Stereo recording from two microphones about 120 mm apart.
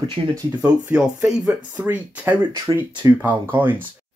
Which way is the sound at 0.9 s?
10° right (ahead or behind).